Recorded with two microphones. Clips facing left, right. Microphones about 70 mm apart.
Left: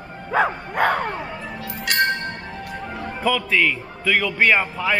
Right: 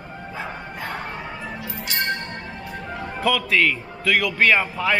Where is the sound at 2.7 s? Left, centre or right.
Centre.